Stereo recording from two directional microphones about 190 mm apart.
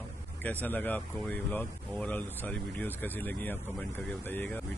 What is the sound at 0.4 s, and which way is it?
Speech, 10° left (ahead or behind).